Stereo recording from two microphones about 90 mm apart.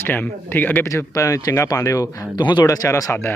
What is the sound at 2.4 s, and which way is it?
Speech, 55° left (ahead or behind).